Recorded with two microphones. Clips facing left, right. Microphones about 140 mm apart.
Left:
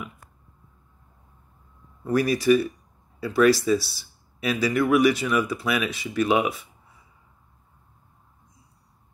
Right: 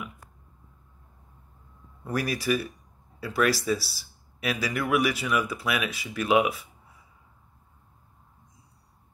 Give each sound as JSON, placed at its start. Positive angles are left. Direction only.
{"t": 2.0, "sound": "speech", "side_deg": -5}